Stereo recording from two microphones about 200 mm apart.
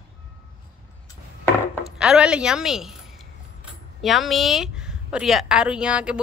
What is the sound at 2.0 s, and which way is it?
Speech, 5° right (ahead or behind).